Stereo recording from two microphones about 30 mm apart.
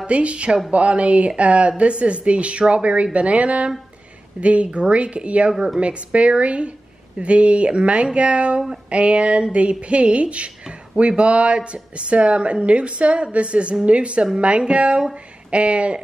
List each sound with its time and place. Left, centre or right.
0.0 s speech: right